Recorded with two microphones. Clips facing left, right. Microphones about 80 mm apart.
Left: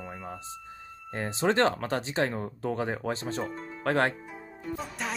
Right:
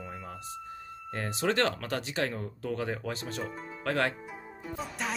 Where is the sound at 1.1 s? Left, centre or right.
Left.